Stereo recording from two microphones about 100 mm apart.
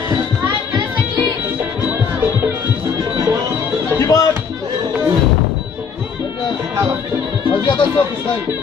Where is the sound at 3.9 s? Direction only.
35° left (ahead or behind).